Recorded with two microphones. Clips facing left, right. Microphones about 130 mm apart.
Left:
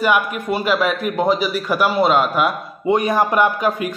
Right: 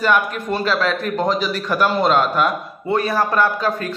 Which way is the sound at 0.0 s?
10° left (ahead or behind).